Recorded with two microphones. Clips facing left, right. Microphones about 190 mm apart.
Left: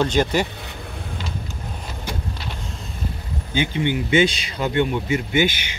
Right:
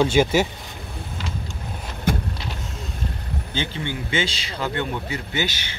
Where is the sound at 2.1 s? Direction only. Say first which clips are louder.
Right 8 dB; 55° right (ahead or behind).